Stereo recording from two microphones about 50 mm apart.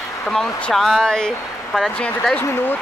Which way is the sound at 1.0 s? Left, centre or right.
Centre.